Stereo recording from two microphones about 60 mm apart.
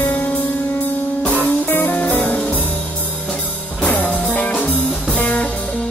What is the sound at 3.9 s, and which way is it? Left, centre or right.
Music, left.